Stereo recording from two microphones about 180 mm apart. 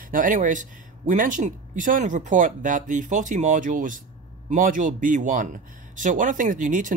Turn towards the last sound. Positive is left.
turn(degrees=-45)  # may be behind; listen again after turning